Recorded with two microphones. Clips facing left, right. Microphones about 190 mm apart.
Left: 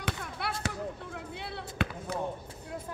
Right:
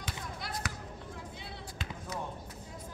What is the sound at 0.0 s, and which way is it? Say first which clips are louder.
Basketball bounce: left 5 dB; 65° left (ahead or behind).